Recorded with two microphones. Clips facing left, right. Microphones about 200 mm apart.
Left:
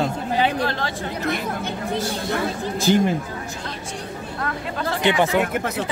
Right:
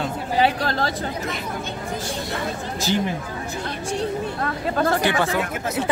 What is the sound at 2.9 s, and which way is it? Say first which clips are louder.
Speech: left 5 dB; 50° left (ahead or behind).